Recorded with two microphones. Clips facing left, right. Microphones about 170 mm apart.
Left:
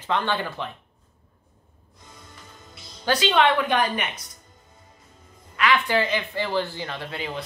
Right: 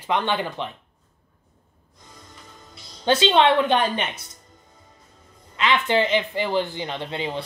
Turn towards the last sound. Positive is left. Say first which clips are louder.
# right 4 dB
turn(degrees=-25)  # may be behind; listen again after turning